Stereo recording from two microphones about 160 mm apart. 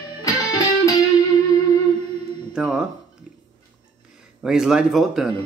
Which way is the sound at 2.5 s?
5° right (ahead or behind).